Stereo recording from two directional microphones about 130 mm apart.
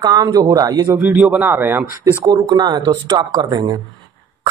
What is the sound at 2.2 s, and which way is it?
Speech, 30° right (ahead or behind).